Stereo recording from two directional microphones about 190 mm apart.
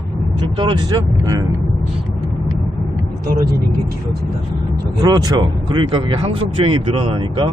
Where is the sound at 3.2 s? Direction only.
55° right (ahead or behind).